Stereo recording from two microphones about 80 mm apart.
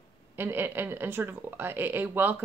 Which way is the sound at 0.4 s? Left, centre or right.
Right.